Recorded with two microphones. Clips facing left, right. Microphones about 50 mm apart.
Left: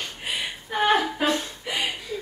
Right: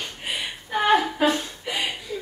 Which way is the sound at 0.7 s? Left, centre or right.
Centre.